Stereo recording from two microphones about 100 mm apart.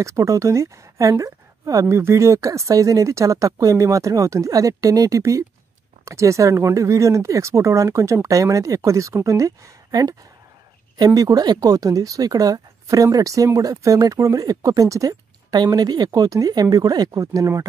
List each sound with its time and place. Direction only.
0.0 s speech: 30° right (ahead or behind)
11.1 s speech: 40° right (ahead or behind)